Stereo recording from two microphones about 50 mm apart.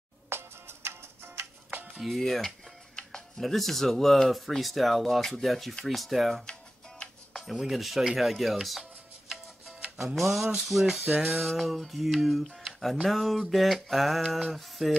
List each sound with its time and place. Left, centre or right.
0.3 s music: right
2.0 s music: centre
3.0 s music: centre
3.3 s music: centre
7.4 s music: centre
9.9 s music: centre